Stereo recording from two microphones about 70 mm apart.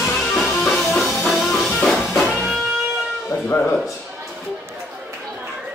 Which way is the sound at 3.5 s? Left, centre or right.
Left.